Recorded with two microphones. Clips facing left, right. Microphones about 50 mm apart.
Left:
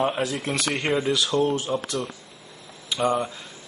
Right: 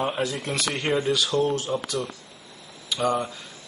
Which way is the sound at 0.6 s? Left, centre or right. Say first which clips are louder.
Left 2 dB; left.